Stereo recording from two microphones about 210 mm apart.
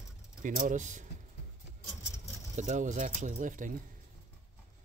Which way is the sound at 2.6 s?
35° right (ahead or behind).